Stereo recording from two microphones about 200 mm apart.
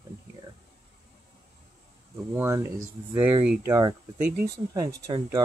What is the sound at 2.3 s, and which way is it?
Speech, 15° right (ahead or behind).